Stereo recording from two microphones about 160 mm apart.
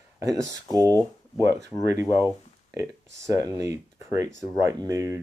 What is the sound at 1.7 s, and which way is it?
Speech, 10° left (ahead or behind).